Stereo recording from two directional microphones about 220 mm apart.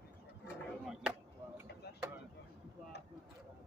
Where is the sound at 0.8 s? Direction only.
5° right (ahead or behind).